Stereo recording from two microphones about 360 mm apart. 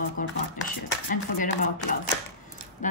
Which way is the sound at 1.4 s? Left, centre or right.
Left.